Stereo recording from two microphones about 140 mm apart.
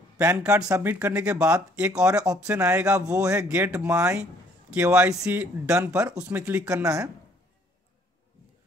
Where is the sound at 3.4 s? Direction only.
10° right (ahead or behind).